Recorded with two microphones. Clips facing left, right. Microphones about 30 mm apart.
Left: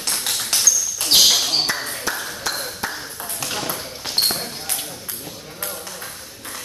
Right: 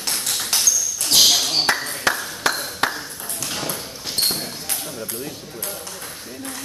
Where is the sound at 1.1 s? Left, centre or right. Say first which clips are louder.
Left 1 dB; left.